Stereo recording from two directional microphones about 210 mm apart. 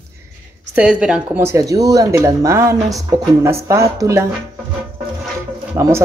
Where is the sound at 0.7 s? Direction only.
5° right (ahead or behind).